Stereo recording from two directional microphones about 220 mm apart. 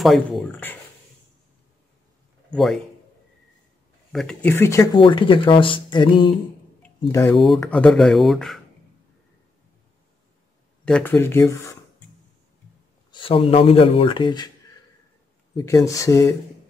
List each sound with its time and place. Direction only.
0.0 s speech: centre (ahead or behind)
2.5 s speech: centre (ahead or behind)
4.1 s speech: centre (ahead or behind)
7.3 s speech: centre (ahead or behind)
10.9 s speech: 5° left (ahead or behind)
13.1 s speech: 25° left (ahead or behind)
15.5 s speech: 15° left (ahead or behind)